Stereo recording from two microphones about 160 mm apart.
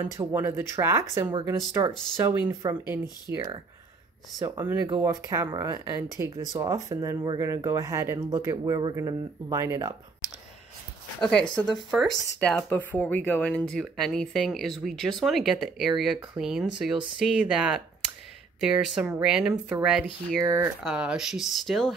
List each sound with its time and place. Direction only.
0.1 s speech: 15° right (ahead or behind)
11.2 s speech: 5° left (ahead or behind)
20.4 s speech: 20° right (ahead or behind)
20.8 s speech: 5° right (ahead or behind)